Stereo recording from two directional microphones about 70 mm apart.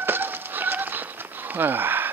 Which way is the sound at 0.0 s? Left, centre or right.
Right.